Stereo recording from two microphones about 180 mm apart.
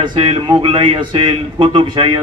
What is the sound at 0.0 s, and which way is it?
A man's voice, 30° right (ahead or behind).